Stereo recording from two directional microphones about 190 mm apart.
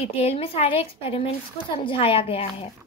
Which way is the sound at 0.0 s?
35° left (ahead or behind).